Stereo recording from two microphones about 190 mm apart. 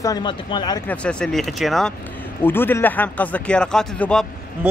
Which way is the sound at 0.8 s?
5° left (ahead or behind).